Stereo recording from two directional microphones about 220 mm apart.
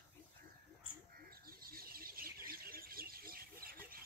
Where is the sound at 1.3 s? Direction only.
40° right (ahead or behind).